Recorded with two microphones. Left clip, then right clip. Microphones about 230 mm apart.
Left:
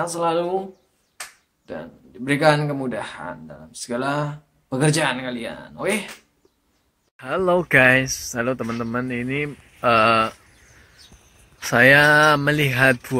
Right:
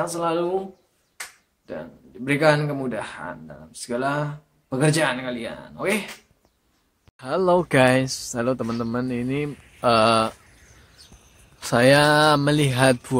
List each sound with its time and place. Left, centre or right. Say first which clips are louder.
0.0 s speech: left 2 dB; centre
1.7 s a man's voice: left 1 dB; centre
7.2 s speech: even; centre
9.5 s mantra: left 1 dB; centre
9.8 s speech: left 2 dB; centre
10.4 s a sound: left 1 dB; centre
12.4 s speech: left 2 dB; centre